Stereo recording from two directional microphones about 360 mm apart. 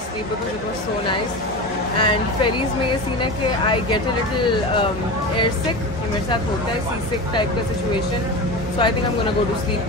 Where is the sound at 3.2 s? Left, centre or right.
Centre.